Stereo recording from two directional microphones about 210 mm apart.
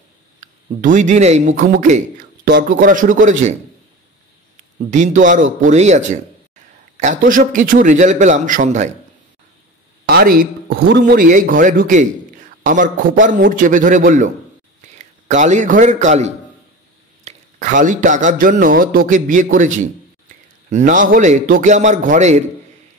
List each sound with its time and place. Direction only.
0.4 s speech: 40° right (ahead or behind)
4.9 s speech: 35° right (ahead or behind)
10.0 s a sound: 45° right (ahead or behind)
10.9 s a man's voice: 50° right (ahead or behind); by 22.4 s 35° right (ahead or behind)